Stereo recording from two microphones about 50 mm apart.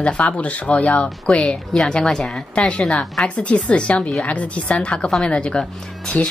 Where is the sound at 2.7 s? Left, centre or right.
Left.